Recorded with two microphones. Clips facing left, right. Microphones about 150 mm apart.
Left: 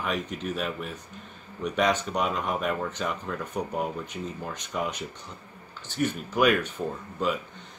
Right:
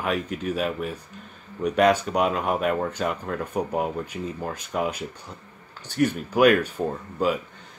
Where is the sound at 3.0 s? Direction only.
45° right (ahead or behind).